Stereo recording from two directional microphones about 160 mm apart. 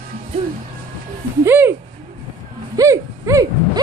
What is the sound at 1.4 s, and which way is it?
Speech, 15° right (ahead or behind).